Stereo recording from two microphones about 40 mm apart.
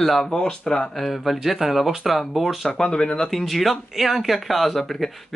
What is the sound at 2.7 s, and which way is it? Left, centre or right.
Speech, left.